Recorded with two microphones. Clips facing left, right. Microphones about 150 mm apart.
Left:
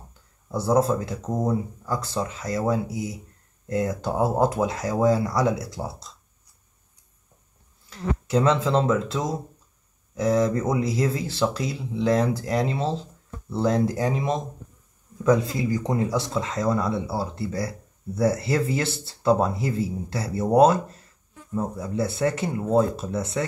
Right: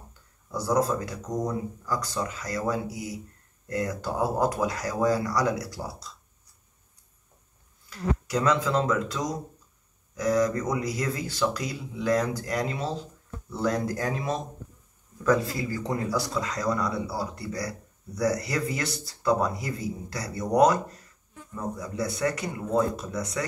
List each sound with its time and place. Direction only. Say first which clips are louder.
0.5 s speech: left 4 dB; 30° left (ahead or behind)
7.9 s speech: left 4 dB; 25° left (ahead or behind)